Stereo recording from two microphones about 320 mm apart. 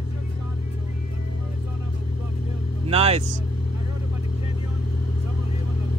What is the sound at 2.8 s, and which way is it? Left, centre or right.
Speech, centre.